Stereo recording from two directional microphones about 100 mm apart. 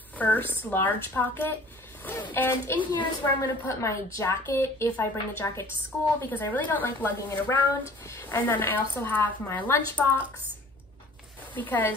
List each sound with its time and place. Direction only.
0.2 s a woman's voice: 20° left (ahead or behind)
2.8 s a woman's voice: 50° left (ahead or behind)
3.3 s a woman's voice: 30° left (ahead or behind)
8.1 s a woman's voice: 30° left (ahead or behind)
11.5 s speech: 20° left (ahead or behind)